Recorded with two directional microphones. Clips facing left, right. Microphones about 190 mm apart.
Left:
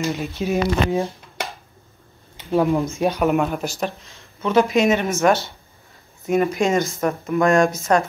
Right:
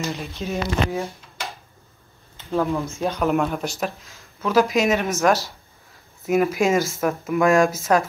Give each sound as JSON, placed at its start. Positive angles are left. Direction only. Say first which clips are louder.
{"t": 0.0, "sound": "speech", "louder": "left 4 dB", "side_deg": 0}
{"t": 0.4, "sound": "speech", "louder": "left 4 dB", "side_deg": 15}
{"t": 2.3, "sound": "speech", "louder": "left 4 dB", "side_deg": 15}
{"t": 3.3, "sound": "speech", "louder": "left 2 dB", "side_deg": 0}